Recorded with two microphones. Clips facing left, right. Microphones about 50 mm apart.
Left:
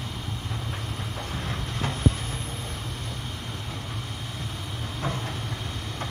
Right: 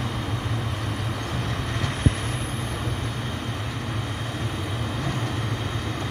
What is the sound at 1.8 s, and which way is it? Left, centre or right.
Vehicle, right.